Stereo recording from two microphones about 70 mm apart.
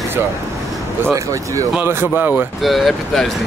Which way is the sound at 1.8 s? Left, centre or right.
Right.